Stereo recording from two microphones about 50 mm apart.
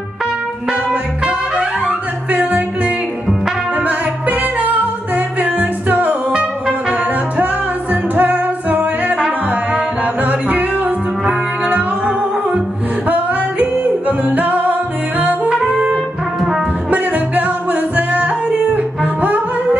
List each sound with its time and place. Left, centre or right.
1.2 s music: centre
2.3 s music: right
7.9 s music: right
10.2 s music: right
13.1 s yodeling: right
15.7 s brass instrument: centre
16.3 s brass instrument: centre
16.9 s music: right